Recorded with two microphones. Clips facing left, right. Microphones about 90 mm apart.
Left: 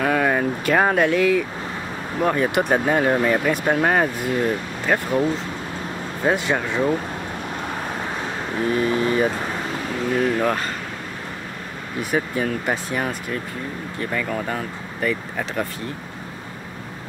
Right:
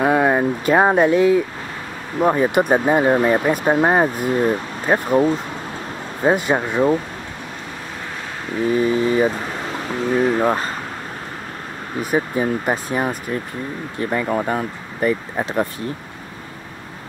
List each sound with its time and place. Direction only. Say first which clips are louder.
0.0 s a sound: right 4 dB; 25° right (ahead or behind)
2.1 s speech: right 4 dB; 20° right (ahead or behind)
6.3 s speech: right 3 dB; 15° right (ahead or behind)
8.6 s speech: right 3 dB; 20° right (ahead or behind)
12.1 s speech: right 3 dB; 25° right (ahead or behind)